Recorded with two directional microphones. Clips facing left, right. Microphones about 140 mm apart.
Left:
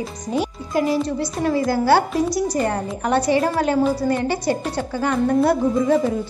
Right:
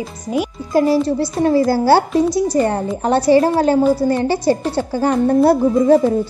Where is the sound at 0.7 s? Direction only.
35° right (ahead or behind).